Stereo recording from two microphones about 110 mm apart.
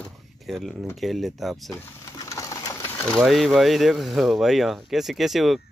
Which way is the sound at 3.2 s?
Centre (ahead or behind).